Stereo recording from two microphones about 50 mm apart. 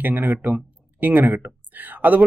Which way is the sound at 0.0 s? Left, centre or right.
Right.